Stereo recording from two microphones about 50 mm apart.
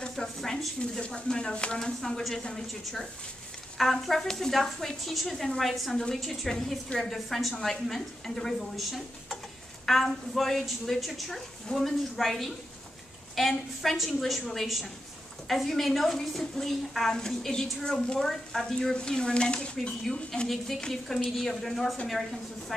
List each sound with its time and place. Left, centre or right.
0.2 s a sound: centre
1.3 s speech: centre
1.8 s a woman's voice: centre
8.7 s a woman's voice: centre
20.4 s a woman's voice: centre